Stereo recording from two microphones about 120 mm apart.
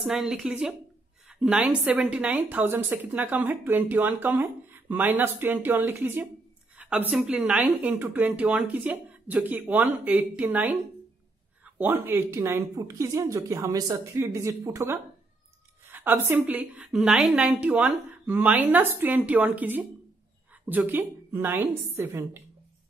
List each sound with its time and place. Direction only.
0.0 s a woman's voice: 5° right (ahead or behind)